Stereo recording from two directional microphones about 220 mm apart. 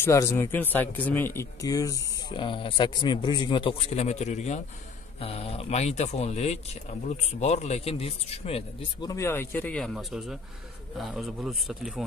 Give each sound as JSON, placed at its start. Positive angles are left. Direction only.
{"t": 0.0, "sound": "speech", "side_deg": 15}
{"t": 9.1, "sound": "speech", "side_deg": 10}